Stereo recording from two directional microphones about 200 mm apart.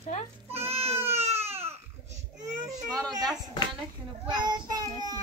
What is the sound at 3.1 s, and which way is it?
Child singing, 20° right (ahead or behind).